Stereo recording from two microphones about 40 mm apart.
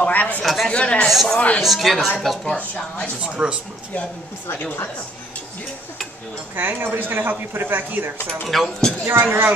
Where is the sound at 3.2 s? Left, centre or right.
Right.